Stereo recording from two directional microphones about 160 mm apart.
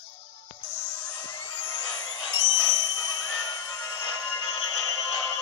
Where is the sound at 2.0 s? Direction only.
25° left (ahead or behind).